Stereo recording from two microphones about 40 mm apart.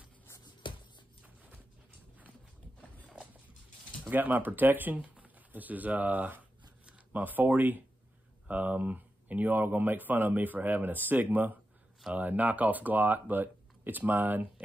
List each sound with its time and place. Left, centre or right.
4.1 s speech: right
4.9 s shuffling cards: right
5.5 s speech: right